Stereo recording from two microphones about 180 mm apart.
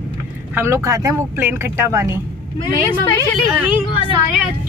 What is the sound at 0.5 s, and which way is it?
Speech, 15° right (ahead or behind).